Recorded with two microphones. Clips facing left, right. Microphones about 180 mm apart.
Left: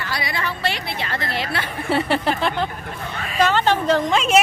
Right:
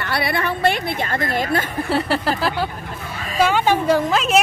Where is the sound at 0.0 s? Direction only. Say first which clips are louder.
Right 5 dB; 60° right (ahead or behind).